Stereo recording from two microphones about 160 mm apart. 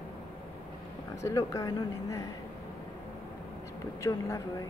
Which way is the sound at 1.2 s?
20° left (ahead or behind).